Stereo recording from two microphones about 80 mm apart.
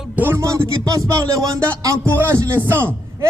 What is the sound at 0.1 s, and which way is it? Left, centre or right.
Music, right.